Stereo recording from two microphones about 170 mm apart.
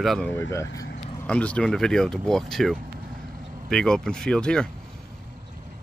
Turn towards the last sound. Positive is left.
turn(degrees=5)  # may be behind; listen again after turning